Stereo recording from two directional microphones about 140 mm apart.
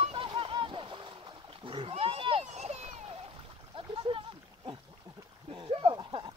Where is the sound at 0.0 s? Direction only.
40° right (ahead or behind).